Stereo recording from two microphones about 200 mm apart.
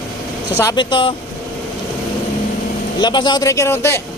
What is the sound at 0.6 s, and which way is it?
Speech, 20° left (ahead or behind).